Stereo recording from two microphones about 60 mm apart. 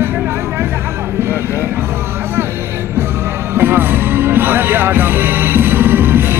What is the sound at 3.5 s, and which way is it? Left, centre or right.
Music, right.